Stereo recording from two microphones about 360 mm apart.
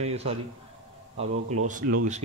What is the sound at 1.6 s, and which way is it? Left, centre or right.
Speech, right.